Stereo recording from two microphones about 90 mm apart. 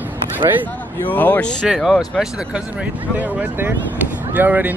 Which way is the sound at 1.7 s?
5° right (ahead or behind).